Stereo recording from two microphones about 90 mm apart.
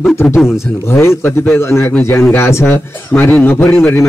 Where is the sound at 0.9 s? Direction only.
30° left (ahead or behind).